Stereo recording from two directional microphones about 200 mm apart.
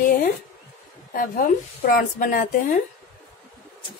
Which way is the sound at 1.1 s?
45° left (ahead or behind).